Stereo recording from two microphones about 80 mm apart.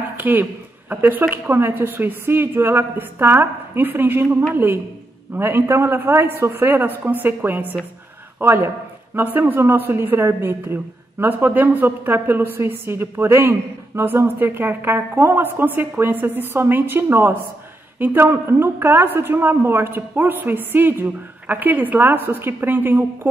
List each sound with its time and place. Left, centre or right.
0.2 s a woman's voice: right